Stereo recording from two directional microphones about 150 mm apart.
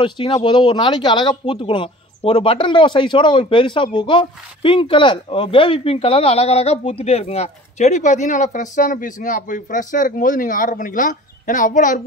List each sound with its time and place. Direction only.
0.0 s a man's voice: 35° left (ahead or behind); by 12.0 s 60° left (ahead or behind)